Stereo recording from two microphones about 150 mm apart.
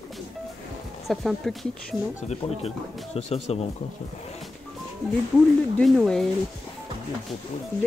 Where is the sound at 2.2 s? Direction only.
45° left (ahead or behind).